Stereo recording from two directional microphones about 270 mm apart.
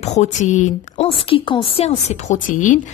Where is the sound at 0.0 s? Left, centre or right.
Left.